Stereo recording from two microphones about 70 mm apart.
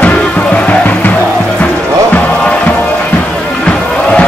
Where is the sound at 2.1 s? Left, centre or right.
Centre.